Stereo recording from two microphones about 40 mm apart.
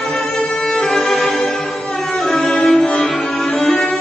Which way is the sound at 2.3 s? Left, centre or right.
Left.